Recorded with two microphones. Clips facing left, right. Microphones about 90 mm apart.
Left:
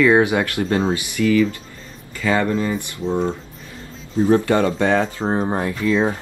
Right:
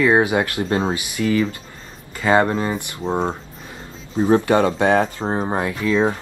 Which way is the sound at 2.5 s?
40° right (ahead or behind).